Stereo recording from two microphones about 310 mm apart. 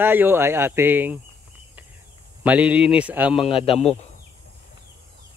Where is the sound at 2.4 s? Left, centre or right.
Centre.